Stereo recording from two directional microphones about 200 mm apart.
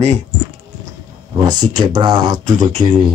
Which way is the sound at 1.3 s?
20° right (ahead or behind).